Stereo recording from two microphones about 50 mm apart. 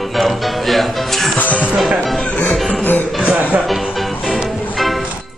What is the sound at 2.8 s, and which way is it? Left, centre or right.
Music, left.